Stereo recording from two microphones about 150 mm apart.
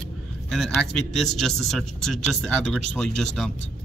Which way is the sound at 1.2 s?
Centre (ahead or behind).